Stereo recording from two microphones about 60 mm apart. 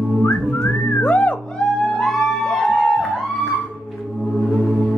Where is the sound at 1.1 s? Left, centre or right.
Left.